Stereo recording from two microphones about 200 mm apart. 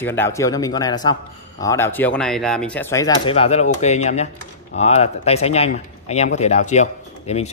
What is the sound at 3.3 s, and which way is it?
Speech, 30° left (ahead or behind).